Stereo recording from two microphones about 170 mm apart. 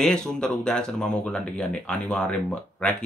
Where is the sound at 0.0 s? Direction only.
5° left (ahead or behind).